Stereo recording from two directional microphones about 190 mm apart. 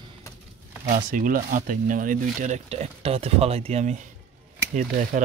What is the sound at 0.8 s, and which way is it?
Speech, 45° right (ahead or behind).